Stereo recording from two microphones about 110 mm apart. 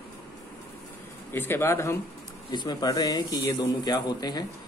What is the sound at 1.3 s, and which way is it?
Speech, 20° left (ahead or behind).